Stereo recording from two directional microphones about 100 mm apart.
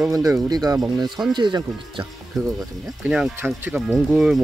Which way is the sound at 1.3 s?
50° right (ahead or behind).